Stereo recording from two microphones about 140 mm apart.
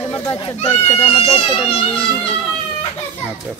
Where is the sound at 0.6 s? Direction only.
40° left (ahead or behind).